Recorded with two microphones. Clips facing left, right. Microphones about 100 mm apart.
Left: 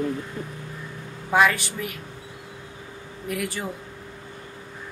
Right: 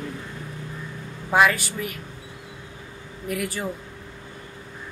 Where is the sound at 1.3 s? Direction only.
5° right (ahead or behind).